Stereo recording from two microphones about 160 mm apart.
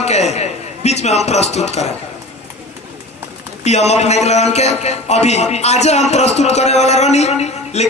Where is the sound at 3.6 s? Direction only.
45° left (ahead or behind).